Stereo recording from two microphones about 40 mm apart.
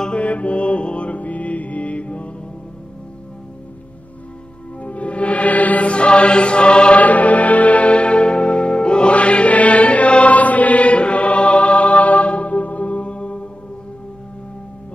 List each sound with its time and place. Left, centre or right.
0.1 s music: left
4.8 s music: left
5.9 s chant: left
7.0 s music: left